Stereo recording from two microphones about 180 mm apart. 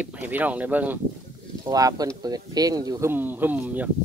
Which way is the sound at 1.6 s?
20° right (ahead or behind).